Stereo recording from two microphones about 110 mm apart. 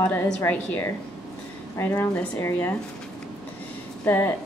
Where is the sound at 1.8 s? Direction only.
25° left (ahead or behind).